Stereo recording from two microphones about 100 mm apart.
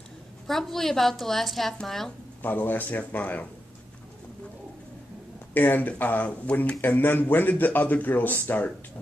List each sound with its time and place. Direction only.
0.5 s a woman's voice: 5° left (ahead or behind)
2.4 s speech: 20° left (ahead or behind)
5.5 s speech: 20° left (ahead or behind)